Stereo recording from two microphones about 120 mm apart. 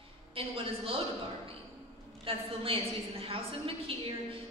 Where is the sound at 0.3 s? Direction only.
50° right (ahead or behind).